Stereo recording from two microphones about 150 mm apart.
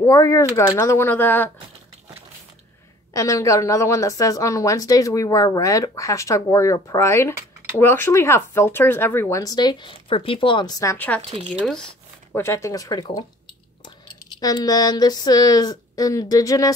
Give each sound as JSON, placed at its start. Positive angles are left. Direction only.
{"t": 0.0, "sound": "a woman's voice", "side_deg": 20}
{"t": 3.1, "sound": "a woman's voice", "side_deg": 20}
{"t": 9.4, "sound": "a woman's voice", "side_deg": 25}
{"t": 11.6, "sound": "a sound", "side_deg": 5}
{"t": 12.4, "sound": "a woman's voice", "side_deg": 20}
{"t": 14.4, "sound": "a woman's voice", "side_deg": 25}